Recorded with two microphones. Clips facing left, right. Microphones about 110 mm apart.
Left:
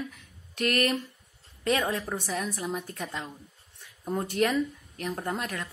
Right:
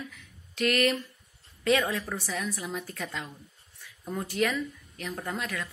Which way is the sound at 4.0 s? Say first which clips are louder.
Left 2 dB; 30° left (ahead or behind).